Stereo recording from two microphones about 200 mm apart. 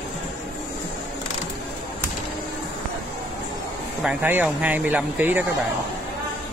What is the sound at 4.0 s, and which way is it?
Speech, 10° right (ahead or behind).